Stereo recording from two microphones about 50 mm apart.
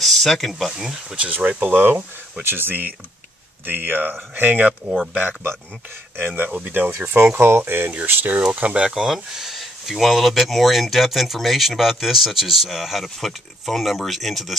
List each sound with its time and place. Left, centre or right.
0.0 s speech: centre
0.7 s speech: centre
1.1 s speech: right
1.6 s speech: right
6.7 s speech: right
8.5 s speech: right
8.9 s speech: centre